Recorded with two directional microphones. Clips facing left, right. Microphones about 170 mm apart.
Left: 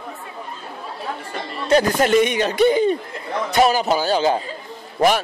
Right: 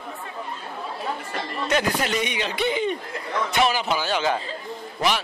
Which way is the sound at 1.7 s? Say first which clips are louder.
Left 8 dB; 40° left (ahead or behind).